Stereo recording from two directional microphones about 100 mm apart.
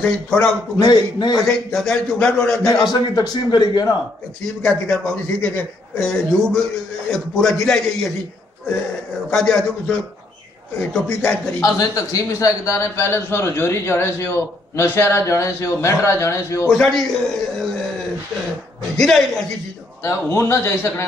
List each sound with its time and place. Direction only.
0.0 s a man's voice: 10° left (ahead or behind)
0.7 s speech: 45° left (ahead or behind)
1.4 s a man's voice: 5° left (ahead or behind)
2.9 s speech: 45° left (ahead or behind)
4.6 s a man's voice: 5° left (ahead or behind)
9.3 s a man's voice: 5° left (ahead or behind)
11.6 s a man's voice: 35° left (ahead or behind)
16.6 s a man's voice: 5° left (ahead or behind)
18.9 s a man's voice: 5° left (ahead or behind)
20.0 s a man's voice: 25° left (ahead or behind)